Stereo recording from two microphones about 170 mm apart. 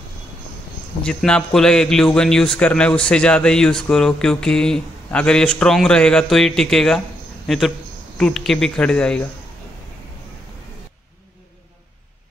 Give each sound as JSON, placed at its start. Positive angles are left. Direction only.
{"t": 1.0, "sound": "a man's voice", "side_deg": 5}